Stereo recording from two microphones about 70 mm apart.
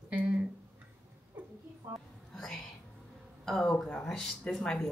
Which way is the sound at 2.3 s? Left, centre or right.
Centre.